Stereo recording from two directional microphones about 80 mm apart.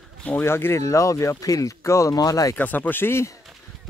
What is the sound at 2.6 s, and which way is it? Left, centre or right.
Speech, left.